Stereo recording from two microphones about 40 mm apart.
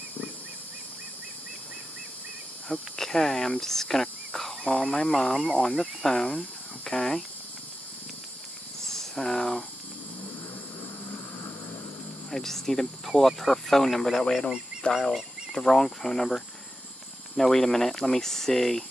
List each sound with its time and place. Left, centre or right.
3.0 s speech: centre
8.8 s a sound: centre
12.3 s speech: centre
14.8 s fowl: left
15.5 s speech: centre